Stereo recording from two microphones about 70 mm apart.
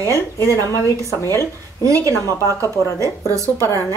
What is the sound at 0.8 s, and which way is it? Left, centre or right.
Speech, left.